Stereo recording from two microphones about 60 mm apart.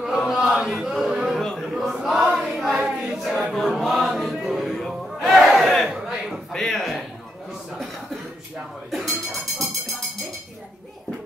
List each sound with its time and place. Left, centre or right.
0.0 s chant: centre
1.4 s a sound: centre
2.3 s choir: centre
3.5 s music: centre
5.2 s battle cry: centre
5.9 s a sound: centre